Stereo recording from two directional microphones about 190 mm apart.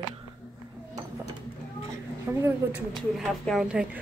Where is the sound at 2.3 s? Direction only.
10° right (ahead or behind).